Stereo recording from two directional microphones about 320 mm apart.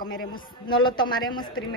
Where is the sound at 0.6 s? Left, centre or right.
Centre.